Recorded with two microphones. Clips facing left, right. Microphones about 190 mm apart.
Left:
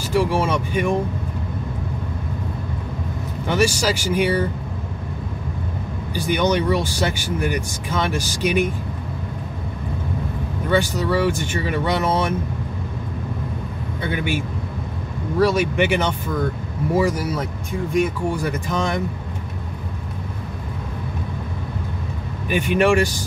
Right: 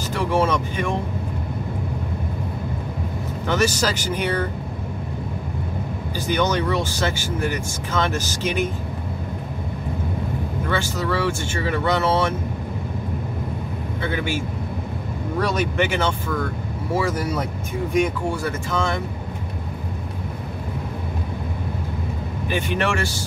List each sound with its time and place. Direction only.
0.1 s speech: 10° left (ahead or behind)
3.4 s speech: 10° left (ahead or behind)
6.1 s speech: 15° left (ahead or behind)
10.7 s speech: 15° left (ahead or behind)
14.1 s speech: 15° left (ahead or behind)
18.3 s speech: 15° left (ahead or behind)
22.5 s speech: 15° left (ahead or behind)